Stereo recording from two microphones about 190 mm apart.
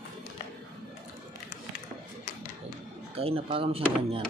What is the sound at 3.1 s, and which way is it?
Speech, 30° right (ahead or behind).